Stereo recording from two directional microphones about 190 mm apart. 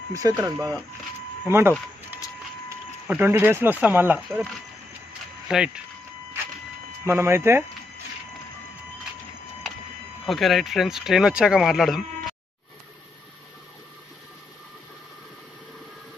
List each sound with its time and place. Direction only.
0.1 s speech: 15° right (ahead or behind)
3.1 s speech: 10° right (ahead or behind)
5.5 s speech: 5° right (ahead or behind)
7.1 s speech: 15° right (ahead or behind)
10.2 s speech: centre (ahead or behind)